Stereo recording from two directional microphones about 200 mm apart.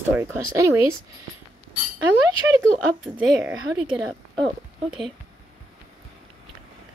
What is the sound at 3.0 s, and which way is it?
Speech, 5° right (ahead or behind).